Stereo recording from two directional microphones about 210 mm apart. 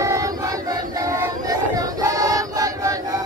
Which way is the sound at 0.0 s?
15° right (ahead or behind).